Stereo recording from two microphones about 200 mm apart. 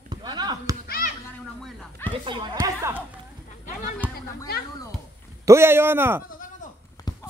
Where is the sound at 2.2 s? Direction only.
25° right (ahead or behind).